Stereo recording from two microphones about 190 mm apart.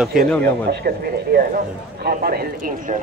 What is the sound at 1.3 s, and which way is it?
A man's voice, 55° right (ahead or behind).